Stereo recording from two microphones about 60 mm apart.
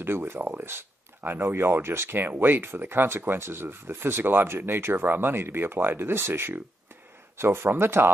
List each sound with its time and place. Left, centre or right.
0.0 s speech: right